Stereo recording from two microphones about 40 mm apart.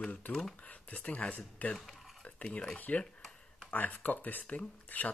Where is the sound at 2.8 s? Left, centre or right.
Left.